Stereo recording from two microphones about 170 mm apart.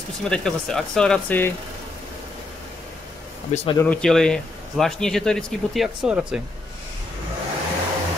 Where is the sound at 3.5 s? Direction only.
40° left (ahead or behind).